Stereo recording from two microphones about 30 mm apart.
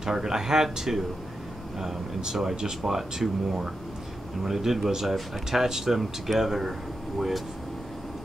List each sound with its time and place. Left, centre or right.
0.0 s speech: right
2.9 s speech: centre
4.4 s speech: centre